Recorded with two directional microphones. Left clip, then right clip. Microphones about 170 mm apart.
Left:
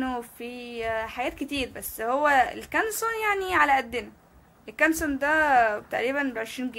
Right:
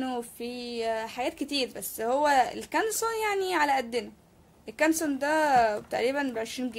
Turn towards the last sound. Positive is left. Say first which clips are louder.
# left 1 dB
turn(degrees=-35)  # may be behind; listen again after turning